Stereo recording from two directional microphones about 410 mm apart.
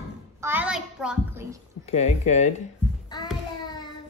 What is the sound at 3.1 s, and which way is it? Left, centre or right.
Child singing, centre.